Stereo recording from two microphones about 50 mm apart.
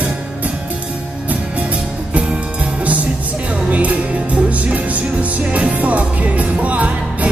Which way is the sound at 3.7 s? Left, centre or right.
Right.